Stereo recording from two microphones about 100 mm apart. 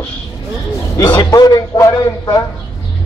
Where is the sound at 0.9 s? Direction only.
40° left (ahead or behind).